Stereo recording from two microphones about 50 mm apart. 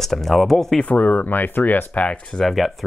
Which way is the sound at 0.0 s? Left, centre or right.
Centre.